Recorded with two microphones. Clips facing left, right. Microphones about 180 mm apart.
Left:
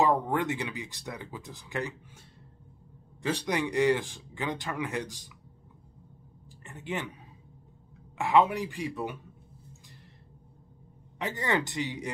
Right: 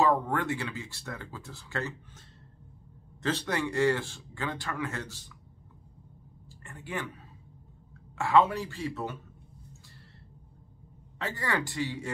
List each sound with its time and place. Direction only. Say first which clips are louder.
0.0 s a man's voice: left 1 dB; 20° left (ahead or behind)
3.2 s a man's voice: left 1 dB; 10° left (ahead or behind)
6.6 s a woman's voice: left 2 dB; 20° left (ahead or behind)
8.2 s a man's voice: even; 15° left (ahead or behind)
11.1 s speech: left 2 dB; 20° left (ahead or behind)